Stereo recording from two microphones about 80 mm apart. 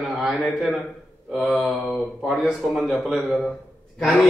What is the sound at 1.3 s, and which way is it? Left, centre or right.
A man's voice, centre.